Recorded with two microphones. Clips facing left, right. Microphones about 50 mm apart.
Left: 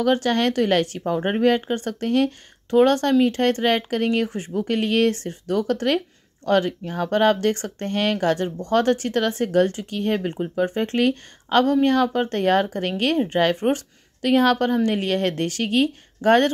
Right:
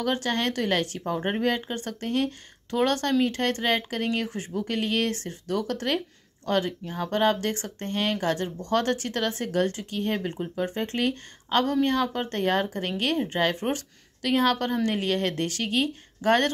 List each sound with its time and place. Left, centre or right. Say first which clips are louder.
0.0 s speech: left 7 dB; left
2.7 s speech: left 7 dB; left
4.6 s speech: left 7 dB; left
13.6 s speech: left 7 dB; left